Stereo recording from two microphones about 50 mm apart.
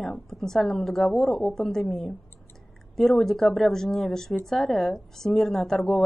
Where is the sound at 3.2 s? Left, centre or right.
Centre.